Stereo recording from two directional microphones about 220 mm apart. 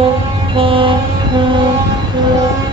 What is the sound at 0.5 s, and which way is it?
Vehicle, 25° right (ahead or behind).